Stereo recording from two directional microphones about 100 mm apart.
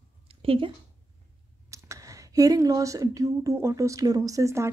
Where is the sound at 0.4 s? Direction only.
65° right (ahead or behind).